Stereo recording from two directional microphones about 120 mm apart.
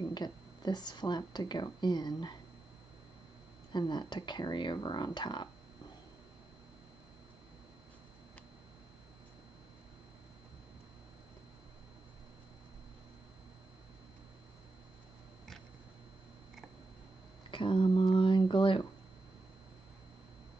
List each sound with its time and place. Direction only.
0.1 s speech: 35° left (ahead or behind)
3.7 s speech: 35° left (ahead or behind)
17.5 s speech: 45° left (ahead or behind)